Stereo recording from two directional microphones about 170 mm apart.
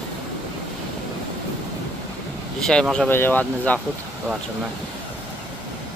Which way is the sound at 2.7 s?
5° left (ahead or behind).